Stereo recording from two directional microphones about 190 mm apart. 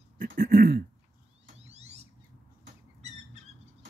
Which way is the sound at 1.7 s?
35° right (ahead or behind).